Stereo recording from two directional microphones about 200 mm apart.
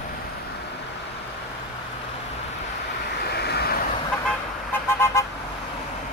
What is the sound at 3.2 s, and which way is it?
Vehicle, 55° left (ahead or behind).